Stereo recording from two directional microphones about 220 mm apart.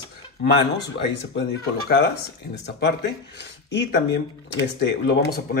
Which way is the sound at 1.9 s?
45° left (ahead or behind).